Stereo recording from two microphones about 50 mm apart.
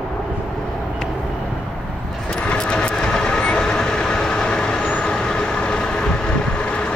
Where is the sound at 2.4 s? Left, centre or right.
Centre.